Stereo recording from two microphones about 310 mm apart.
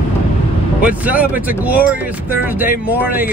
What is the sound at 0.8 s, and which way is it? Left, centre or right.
Speech, centre.